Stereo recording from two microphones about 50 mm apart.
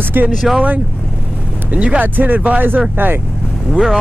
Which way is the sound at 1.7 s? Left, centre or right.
Right.